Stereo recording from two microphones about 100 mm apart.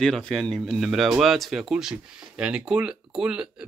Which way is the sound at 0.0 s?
5° left (ahead or behind).